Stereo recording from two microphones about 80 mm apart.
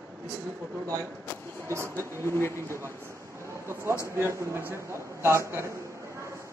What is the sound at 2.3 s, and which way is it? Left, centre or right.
Speech, left.